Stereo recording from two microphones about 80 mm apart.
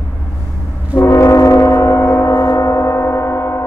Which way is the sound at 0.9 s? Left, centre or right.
Left.